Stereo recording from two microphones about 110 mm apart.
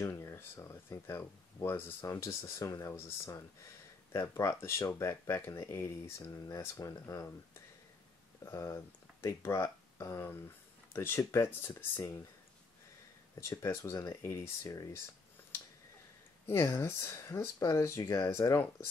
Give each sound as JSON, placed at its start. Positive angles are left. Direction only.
{"t": 0.2, "sound": "speech", "side_deg": 25}
{"t": 8.5, "sound": "speech", "side_deg": 25}
{"t": 13.5, "sound": "speech", "side_deg": 30}
{"t": 14.2, "sound": "speech", "side_deg": 25}
{"t": 16.4, "sound": "speech", "side_deg": 25}